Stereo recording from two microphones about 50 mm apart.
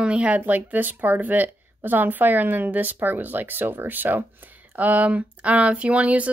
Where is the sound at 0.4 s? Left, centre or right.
Right.